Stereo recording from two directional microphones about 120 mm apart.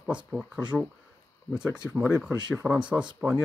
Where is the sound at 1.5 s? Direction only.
25° left (ahead or behind).